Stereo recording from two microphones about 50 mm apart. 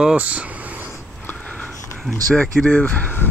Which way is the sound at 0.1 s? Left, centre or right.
Right.